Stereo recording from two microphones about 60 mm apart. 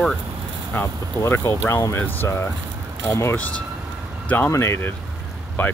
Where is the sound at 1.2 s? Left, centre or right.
Left.